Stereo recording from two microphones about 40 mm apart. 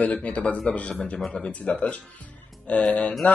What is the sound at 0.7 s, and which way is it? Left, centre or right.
A man's voice, left.